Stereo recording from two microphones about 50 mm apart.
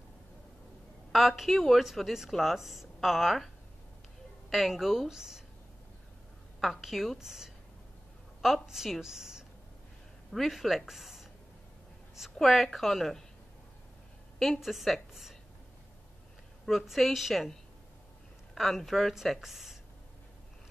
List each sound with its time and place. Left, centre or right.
1.1 s a woman's voice: centre
4.5 s a woman's voice: centre
6.6 s a woman's voice: centre
14.4 s a woman's voice: centre
16.6 s a woman's voice: centre
18.5 s a woman's voice: centre